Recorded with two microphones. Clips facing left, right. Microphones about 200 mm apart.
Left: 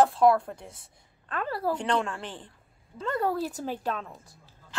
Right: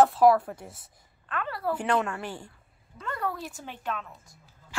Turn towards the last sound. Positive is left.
turn(degrees=35)  # may be behind; listen again after turning